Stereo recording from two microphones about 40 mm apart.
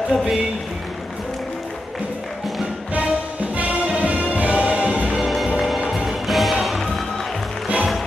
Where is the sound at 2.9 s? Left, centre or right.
Right.